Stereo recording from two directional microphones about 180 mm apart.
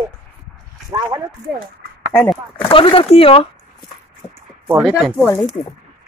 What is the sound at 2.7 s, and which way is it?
Speech, 30° left (ahead or behind).